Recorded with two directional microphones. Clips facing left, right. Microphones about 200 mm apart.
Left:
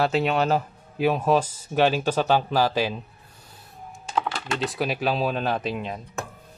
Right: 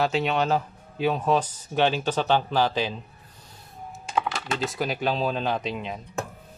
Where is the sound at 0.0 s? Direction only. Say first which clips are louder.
Left 2 dB; 5° left (ahead or behind).